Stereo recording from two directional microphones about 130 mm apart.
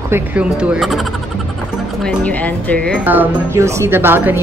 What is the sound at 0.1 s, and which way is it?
Speech, 10° right (ahead or behind).